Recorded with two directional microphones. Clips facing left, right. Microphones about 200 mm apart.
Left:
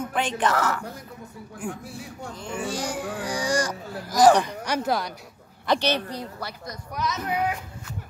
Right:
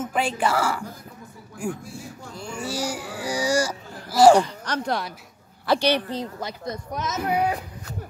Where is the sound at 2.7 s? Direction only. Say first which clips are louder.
Right 2 dB; 10° right (ahead or behind).